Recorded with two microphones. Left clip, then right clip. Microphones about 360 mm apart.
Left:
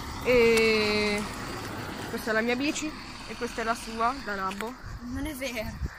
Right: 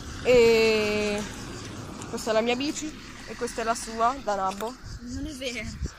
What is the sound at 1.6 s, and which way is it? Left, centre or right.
Vehicle, left.